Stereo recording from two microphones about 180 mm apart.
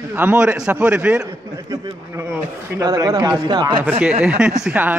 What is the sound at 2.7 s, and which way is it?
Speech, 20° right (ahead or behind).